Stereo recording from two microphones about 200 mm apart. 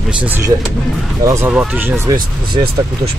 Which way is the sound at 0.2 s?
5° right (ahead or behind).